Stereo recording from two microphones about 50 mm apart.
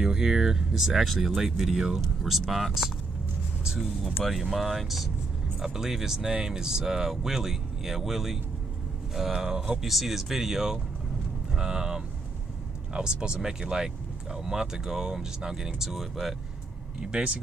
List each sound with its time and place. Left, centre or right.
0.0 s speech: centre
4.0 s speech: centre
17.0 s speech: right